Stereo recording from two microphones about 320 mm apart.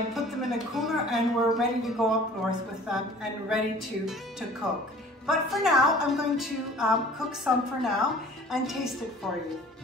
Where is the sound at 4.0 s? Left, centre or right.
Centre.